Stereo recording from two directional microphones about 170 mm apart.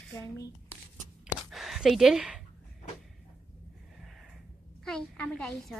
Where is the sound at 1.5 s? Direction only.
Centre (ahead or behind).